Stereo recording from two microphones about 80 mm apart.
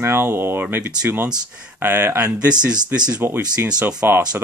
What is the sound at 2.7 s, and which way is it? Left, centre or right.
Speech, right.